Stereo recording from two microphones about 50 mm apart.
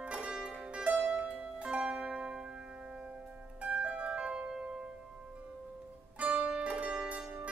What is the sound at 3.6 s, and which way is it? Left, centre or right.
Harp, right.